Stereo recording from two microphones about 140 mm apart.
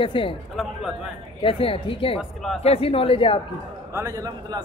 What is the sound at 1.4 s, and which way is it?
A man's voice, 40° left (ahead or behind).